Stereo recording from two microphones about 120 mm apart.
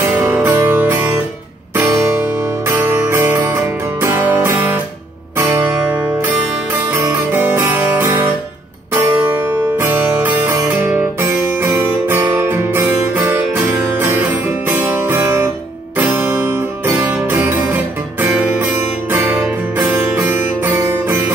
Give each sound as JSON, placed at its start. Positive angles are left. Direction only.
{"t": 0.2, "sound": "music", "side_deg": -15}
{"t": 2.7, "sound": "music", "side_deg": -20}
{"t": 14.7, "sound": "music", "side_deg": -15}
{"t": 16.8, "sound": "music", "side_deg": -20}
{"t": 19.9, "sound": "music", "side_deg": -20}